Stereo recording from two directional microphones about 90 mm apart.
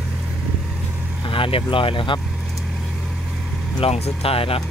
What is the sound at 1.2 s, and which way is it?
Speech, 75° left (ahead or behind).